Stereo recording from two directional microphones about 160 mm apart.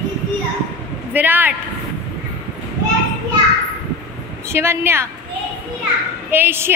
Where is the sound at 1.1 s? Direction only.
10° right (ahead or behind).